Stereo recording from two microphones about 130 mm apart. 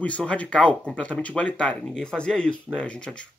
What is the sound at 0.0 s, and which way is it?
A man's voice, 10° left (ahead or behind).